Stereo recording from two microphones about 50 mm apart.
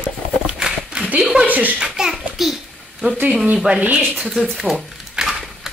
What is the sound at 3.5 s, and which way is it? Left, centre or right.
Speech, right.